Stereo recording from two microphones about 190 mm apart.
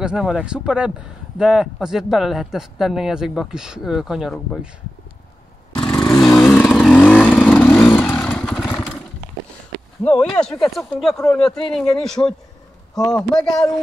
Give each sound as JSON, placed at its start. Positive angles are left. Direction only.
{"t": 0.0, "sound": "speech", "side_deg": -5}
{"t": 5.9, "sound": "motorcycle", "side_deg": 15}
{"t": 6.2, "sound": "vehicle", "side_deg": 0}
{"t": 7.2, "sound": "motorcycle", "side_deg": 5}
{"t": 10.0, "sound": "speech", "side_deg": 5}
{"t": 11.1, "sound": "speech", "side_deg": 15}
{"t": 11.4, "sound": "speech", "side_deg": 0}